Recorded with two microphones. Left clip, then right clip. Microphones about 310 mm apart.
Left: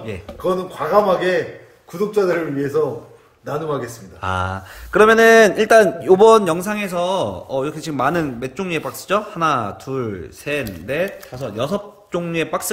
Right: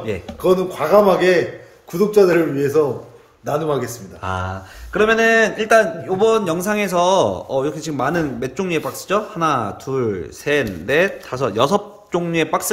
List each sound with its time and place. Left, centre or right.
0.4 s a man's voice: right
4.2 s speech: centre